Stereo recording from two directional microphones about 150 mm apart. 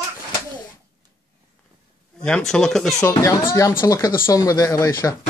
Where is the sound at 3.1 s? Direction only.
20° left (ahead or behind).